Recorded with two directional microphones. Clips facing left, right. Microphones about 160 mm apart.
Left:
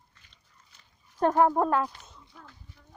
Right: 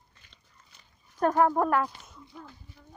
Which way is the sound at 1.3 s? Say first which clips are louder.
Left 1 dB; 15° left (ahead or behind).